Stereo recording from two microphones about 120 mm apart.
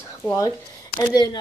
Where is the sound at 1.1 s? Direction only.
35° left (ahead or behind).